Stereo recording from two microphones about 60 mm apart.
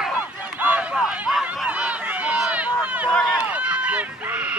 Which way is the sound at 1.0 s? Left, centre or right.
Centre.